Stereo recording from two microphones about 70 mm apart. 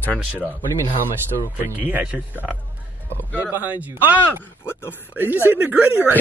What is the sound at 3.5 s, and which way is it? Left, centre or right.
Speech, right.